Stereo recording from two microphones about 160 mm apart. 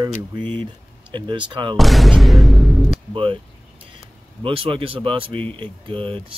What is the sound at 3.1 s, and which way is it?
Speech, 35° right (ahead or behind).